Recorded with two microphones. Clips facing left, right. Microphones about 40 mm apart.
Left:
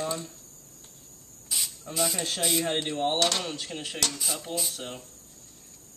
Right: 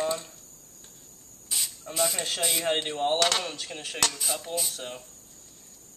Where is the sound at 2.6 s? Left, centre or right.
Centre.